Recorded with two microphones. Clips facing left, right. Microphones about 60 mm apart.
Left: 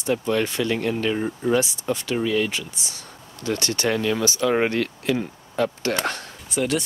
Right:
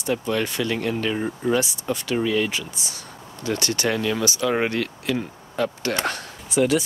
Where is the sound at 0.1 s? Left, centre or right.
Centre.